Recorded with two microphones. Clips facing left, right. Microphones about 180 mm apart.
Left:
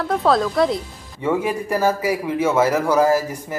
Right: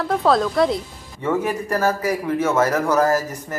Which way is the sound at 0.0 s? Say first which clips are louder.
Even; centre (ahead or behind).